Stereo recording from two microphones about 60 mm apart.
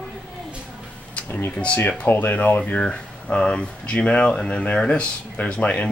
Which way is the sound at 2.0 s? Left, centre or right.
Left.